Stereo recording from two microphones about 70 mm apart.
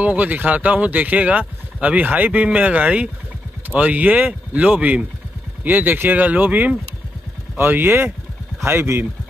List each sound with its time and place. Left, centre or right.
0.0 s speech: right